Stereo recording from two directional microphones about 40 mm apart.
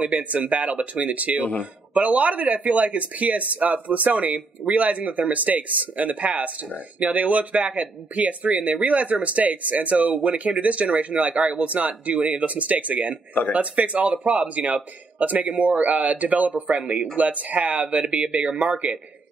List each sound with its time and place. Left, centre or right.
0.3 s speech: right